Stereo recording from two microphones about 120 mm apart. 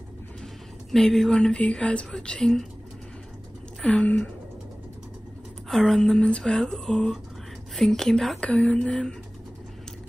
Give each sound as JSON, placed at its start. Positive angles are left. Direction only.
{"t": 0.9, "sound": "speech", "side_deg": 5}
{"t": 3.8, "sound": "a sound", "side_deg": 10}
{"t": 5.7, "sound": "speech", "side_deg": 5}